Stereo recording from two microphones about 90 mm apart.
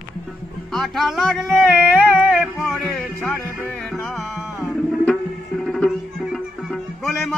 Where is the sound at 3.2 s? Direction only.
15° left (ahead or behind).